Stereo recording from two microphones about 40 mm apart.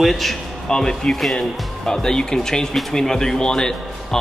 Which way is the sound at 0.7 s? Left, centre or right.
Centre.